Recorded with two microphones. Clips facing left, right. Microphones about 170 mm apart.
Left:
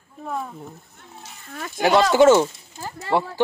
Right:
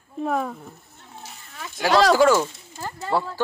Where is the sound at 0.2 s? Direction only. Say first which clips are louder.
Right 5 dB; 75° right (ahead or behind).